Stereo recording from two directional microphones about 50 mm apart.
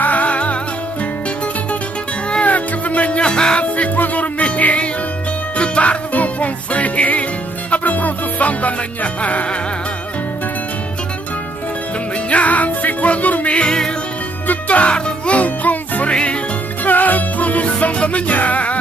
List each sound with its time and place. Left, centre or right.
0.0 s music: left
2.3 s music: left
3.6 s music: left
12.3 s music: left
16.1 s music: left
16.8 s music: left